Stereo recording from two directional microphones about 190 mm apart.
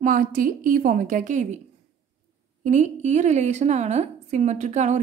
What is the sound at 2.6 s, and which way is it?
A woman's voice, 40° right (ahead or behind).